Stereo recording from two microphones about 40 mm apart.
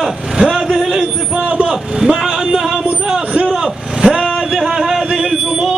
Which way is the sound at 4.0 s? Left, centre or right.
Centre.